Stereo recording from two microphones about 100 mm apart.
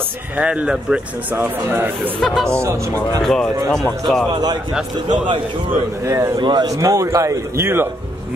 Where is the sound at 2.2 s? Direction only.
5° left (ahead or behind).